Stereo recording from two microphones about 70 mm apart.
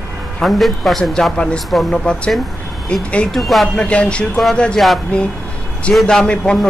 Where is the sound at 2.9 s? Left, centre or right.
Centre.